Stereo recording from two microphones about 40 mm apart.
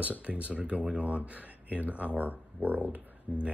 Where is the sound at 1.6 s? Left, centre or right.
Right.